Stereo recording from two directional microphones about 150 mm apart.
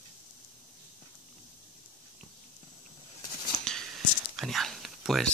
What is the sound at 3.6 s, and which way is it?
Whispering, 5° left (ahead or behind).